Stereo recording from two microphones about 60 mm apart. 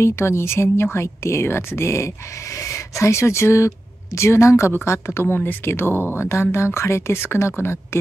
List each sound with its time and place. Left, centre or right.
0.0 s speech: left